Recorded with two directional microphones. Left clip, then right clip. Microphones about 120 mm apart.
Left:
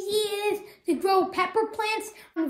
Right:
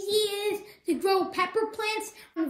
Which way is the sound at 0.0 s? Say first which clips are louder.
Left 1 dB; 25° left (ahead or behind).